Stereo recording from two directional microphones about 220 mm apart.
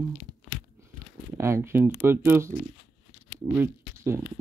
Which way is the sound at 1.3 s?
10° right (ahead or behind).